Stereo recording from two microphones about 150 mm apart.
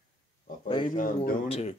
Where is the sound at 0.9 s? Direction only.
70° left (ahead or behind).